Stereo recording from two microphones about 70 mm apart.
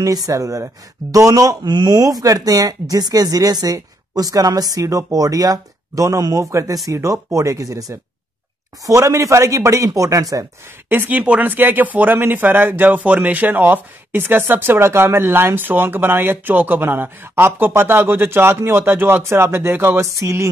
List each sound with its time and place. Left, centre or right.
0.0 s speech: right
10.9 s speech: right
20.0 s speech: right